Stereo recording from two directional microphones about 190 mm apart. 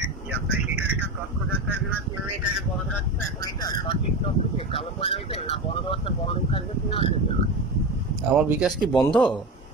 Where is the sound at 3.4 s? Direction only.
20° left (ahead or behind).